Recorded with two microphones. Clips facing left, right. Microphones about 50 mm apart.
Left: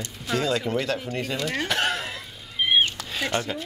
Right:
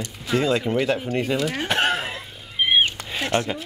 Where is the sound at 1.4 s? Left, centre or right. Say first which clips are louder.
Right 2 dB; centre.